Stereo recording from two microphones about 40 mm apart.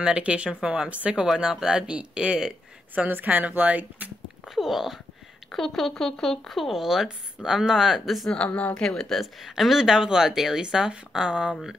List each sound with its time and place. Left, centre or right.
0.0 s speech: right
0.8 s speech: right
1.1 s speech: centre
2.9 s speech: right
4.5 s speech: centre
5.5 s speech: centre
6.5 s speech: centre
8.8 s speech: centre
9.6 s speech: centre